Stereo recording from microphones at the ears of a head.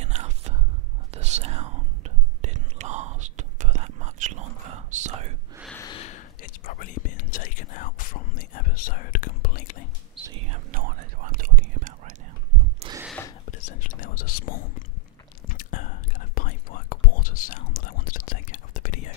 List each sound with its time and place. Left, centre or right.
0.0 s whispering: right
5.8 s whispering: left
10.2 s whispering: right
13.2 s whispering: left